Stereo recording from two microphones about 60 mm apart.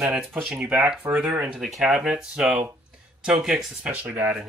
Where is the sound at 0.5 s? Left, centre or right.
Centre.